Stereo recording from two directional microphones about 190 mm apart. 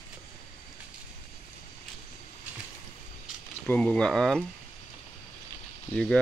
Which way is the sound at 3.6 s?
5° left (ahead or behind).